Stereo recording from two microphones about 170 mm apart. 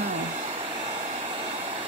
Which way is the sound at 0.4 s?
35° right (ahead or behind).